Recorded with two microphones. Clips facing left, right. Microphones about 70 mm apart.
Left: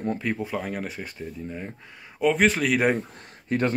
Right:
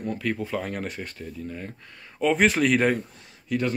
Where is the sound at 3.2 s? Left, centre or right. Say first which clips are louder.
Left 2 dB; left.